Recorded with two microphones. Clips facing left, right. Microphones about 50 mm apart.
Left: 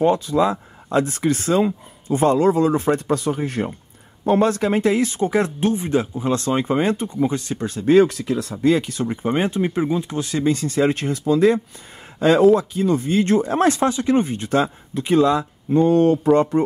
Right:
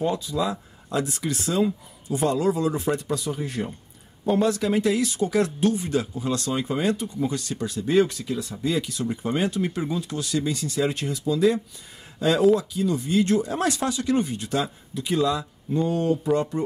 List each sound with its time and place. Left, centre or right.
0.0 s speech: left
7.8 s speech: left